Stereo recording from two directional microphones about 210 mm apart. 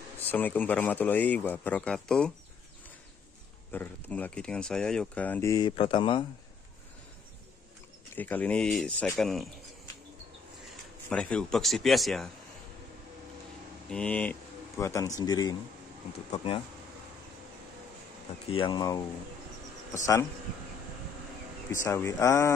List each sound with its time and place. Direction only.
0.2 s speech: 10° left (ahead or behind)
3.7 s speech: 10° left (ahead or behind); by 6.2 s 25° left (ahead or behind)
8.2 s speech: 5° left (ahead or behind)
11.1 s speech: 5° left (ahead or behind)
13.8 s speech: 5° left (ahead or behind); by 16.6 s 25° left (ahead or behind)
18.5 s speech: 25° left (ahead or behind)
21.7 s speech: 15° left (ahead or behind)